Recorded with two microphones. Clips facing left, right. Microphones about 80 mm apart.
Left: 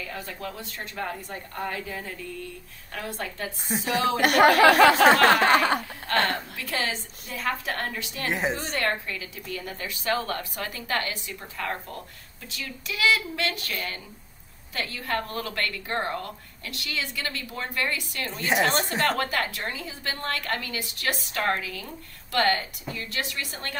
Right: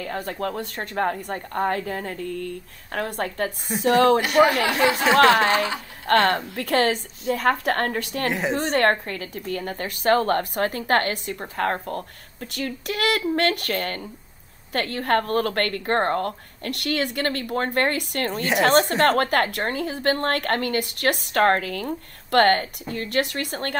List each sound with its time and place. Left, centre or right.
0.0 s a woman's voice: right
4.2 s speech: left
5.3 s snicker: left
6.0 s a woman's voice: right